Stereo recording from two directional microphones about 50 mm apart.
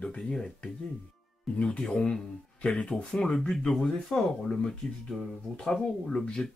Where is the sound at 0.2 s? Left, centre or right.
Centre.